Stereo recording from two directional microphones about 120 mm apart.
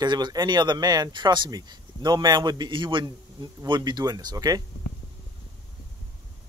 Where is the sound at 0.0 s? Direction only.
35° right (ahead or behind).